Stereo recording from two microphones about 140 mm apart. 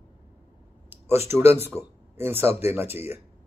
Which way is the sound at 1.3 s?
15° right (ahead or behind).